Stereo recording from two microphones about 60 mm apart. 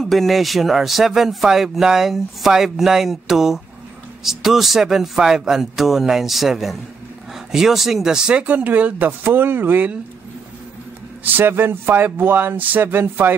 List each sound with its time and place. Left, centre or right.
0.0 s speech: centre; by 9.8 s right
11.3 s speech: right